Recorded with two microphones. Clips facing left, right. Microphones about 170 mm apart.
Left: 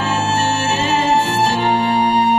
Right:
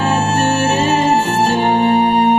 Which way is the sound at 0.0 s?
55° right (ahead or behind).